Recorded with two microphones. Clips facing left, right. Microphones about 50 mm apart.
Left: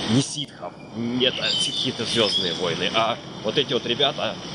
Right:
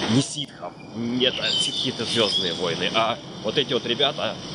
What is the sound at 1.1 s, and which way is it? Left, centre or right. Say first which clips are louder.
Speech: even; centre.